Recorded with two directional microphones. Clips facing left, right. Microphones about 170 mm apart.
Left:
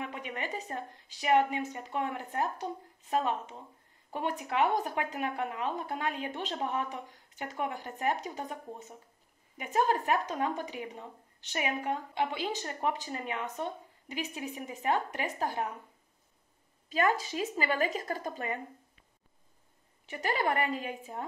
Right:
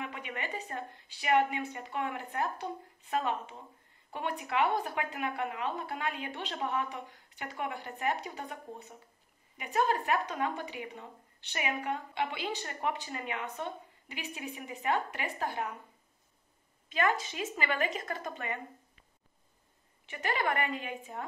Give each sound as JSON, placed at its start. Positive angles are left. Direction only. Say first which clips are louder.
{"t": 0.0, "sound": "a woman's voice", "louder": "left 2 dB", "side_deg": 40}
{"t": 16.9, "sound": "a woman's voice", "louder": "left 2 dB", "side_deg": 35}
{"t": 20.1, "sound": "a woman's voice", "louder": "left 2 dB", "side_deg": 35}